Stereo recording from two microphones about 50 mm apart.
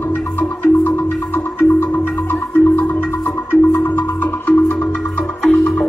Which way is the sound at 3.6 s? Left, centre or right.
Left.